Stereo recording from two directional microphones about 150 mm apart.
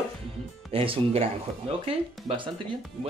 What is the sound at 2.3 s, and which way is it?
Speech, 40° right (ahead or behind).